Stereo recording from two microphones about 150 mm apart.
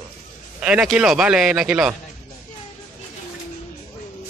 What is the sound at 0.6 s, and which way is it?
A man's voice, 5° right (ahead or behind).